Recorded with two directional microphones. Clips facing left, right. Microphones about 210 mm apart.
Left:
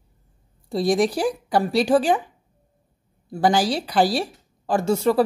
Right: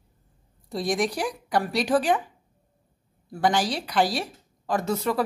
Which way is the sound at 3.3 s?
30° left (ahead or behind).